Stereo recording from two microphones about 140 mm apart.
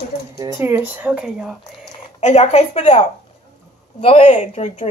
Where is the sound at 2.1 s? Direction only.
50° left (ahead or behind).